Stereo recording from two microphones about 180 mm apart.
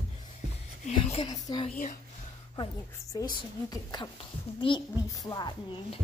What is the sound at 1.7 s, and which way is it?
Speech, 45° left (ahead or behind).